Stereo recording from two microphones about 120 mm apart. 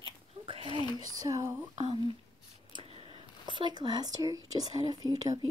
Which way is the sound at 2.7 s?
50° right (ahead or behind).